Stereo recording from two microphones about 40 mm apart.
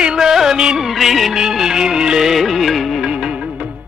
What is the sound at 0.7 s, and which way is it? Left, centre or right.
Music of bollywood, centre.